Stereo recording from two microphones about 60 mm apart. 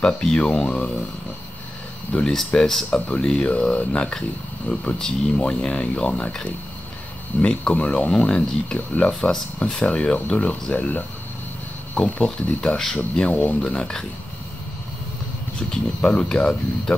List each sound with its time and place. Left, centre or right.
0.0 s speech: centre
2.1 s speech: centre
8.7 s speech: left
9.2 s speech: centre
12.5 s speech: centre
13.3 s speech: left
13.7 s speech: centre
15.7 s speech: centre